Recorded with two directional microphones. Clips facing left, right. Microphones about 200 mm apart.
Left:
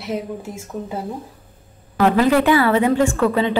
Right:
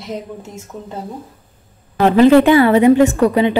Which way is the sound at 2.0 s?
25° right (ahead or behind).